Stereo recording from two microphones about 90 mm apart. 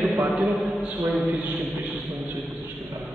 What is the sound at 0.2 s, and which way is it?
A man's voice, 5° right (ahead or behind).